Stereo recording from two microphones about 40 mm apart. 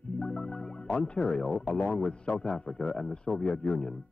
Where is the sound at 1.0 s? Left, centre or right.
Centre.